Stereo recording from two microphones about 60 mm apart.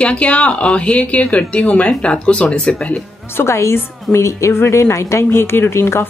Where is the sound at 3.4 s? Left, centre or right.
Left.